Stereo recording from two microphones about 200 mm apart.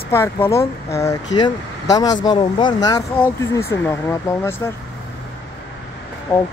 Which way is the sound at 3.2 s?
10° left (ahead or behind).